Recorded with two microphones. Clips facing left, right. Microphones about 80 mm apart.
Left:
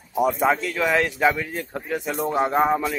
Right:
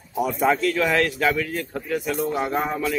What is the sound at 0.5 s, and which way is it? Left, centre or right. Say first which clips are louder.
Speech: right 1 dB; centre.